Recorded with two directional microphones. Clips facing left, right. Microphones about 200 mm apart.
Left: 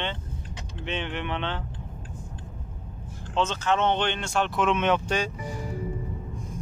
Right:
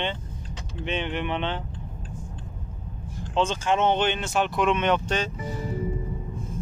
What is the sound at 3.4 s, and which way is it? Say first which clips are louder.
Speech: right 2 dB; 10° right (ahead or behind).